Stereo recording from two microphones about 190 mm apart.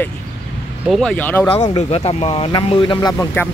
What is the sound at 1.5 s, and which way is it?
Speech, 30° left (ahead or behind).